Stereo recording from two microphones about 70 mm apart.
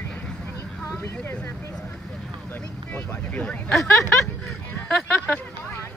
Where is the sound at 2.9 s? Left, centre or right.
Left.